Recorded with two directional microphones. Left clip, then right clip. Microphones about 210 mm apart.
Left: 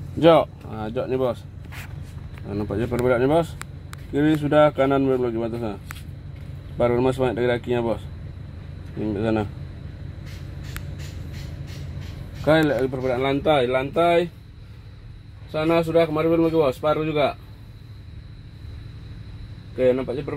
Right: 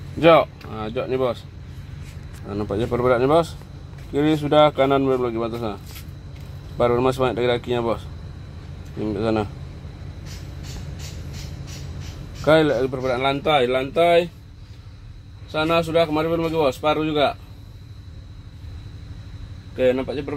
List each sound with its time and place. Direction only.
0.2 s speech: 10° left (ahead or behind)
2.4 s speech: centre (ahead or behind)
6.8 s speech: centre (ahead or behind)
9.0 s speech: centre (ahead or behind)
12.4 s speech: 5° left (ahead or behind); by 14.2 s 20° left (ahead or behind)
15.5 s speech: 30° left (ahead or behind)
19.8 s speech: 25° left (ahead or behind)